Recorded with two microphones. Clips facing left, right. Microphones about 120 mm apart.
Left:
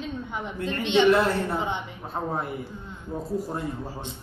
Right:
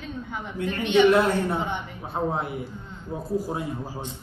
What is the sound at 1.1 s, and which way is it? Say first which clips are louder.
A woman's voice: right 1 dB; centre (ahead or behind).